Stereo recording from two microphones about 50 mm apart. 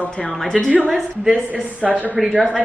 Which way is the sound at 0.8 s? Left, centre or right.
Centre.